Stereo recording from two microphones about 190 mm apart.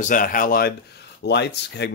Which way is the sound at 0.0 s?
45° left (ahead or behind).